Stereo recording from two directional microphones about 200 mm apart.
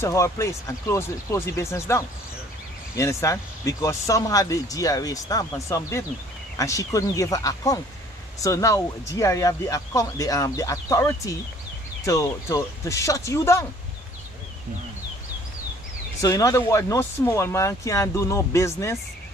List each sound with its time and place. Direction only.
0.0 s speech: 15° left (ahead or behind)
16.2 s speech: 15° left (ahead or behind)